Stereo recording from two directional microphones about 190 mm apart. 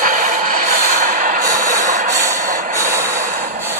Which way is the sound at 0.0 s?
45° right (ahead or behind).